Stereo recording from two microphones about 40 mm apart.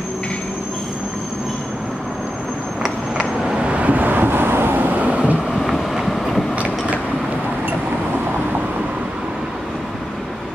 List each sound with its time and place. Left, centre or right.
3.4 s vehicle: right
4.8 s vehicle: right
5.5 s vehicle: centre
6.5 s train: right